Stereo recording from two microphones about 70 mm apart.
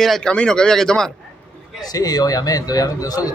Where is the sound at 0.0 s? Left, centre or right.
Centre.